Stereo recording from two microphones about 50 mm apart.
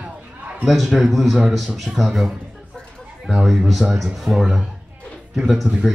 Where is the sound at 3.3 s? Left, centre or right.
Centre.